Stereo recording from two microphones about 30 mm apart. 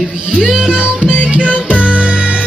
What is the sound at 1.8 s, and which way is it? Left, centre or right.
Music, right.